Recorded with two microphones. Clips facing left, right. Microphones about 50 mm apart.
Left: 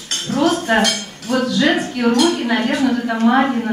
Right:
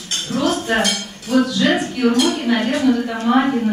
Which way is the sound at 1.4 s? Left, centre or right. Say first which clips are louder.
Left 1 dB; centre.